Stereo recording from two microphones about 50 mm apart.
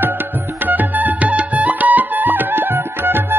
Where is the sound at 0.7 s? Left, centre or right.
Right.